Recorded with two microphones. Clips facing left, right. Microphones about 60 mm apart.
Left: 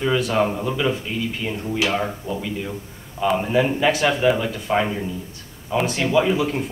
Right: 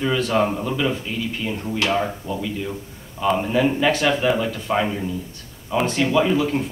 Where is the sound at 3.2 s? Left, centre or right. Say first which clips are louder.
Even; centre.